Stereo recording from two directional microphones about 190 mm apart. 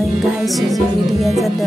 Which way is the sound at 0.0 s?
Centre (ahead or behind).